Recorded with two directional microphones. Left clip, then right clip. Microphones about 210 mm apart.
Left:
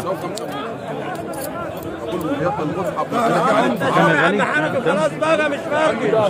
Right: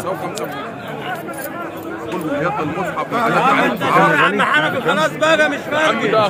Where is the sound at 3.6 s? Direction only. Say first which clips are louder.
Right 2 dB; 10° left (ahead or behind).